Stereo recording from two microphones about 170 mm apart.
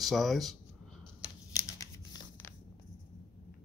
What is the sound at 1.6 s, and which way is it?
Tearing, 20° left (ahead or behind).